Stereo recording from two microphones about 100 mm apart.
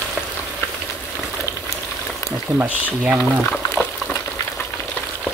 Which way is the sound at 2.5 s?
15° right (ahead or behind).